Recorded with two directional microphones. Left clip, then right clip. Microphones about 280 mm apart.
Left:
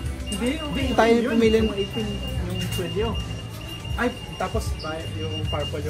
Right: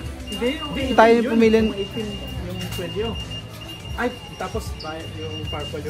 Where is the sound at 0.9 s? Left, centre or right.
Right.